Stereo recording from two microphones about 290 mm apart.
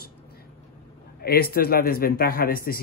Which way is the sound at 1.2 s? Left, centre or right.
Left.